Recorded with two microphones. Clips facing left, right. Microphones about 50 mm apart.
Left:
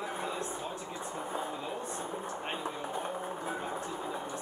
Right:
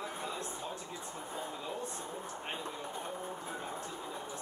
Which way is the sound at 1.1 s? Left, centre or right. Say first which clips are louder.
Left 6 dB; centre.